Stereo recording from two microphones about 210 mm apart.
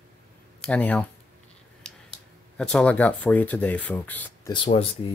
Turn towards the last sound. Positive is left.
turn(degrees=25)  # may be behind; listen again after turning